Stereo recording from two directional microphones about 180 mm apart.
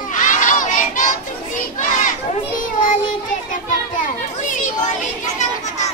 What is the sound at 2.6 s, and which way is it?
Child singing, 50° left (ahead or behind).